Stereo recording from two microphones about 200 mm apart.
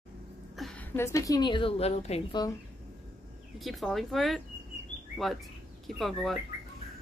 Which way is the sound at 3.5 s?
Centre (ahead or behind).